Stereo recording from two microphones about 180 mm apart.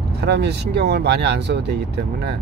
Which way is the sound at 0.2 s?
70° right (ahead or behind).